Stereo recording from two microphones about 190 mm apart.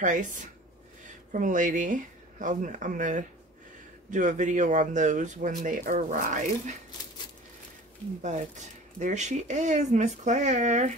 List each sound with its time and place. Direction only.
0.0 s speech: 40° right (ahead or behind)
8.2 s speech: 40° right (ahead or behind)